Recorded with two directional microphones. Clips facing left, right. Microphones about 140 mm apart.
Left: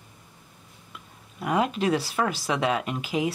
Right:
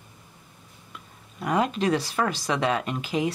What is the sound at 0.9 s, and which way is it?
Speech, 5° left (ahead or behind).